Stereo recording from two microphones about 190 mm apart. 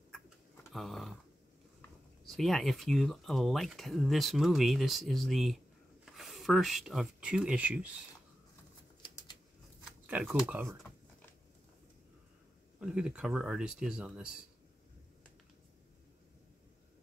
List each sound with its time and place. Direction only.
0.7 s a sound: centre (ahead or behind)
2.2 s speech: centre (ahead or behind)
10.0 s speech: 10° right (ahead or behind)
12.8 s speech: 5° right (ahead or behind)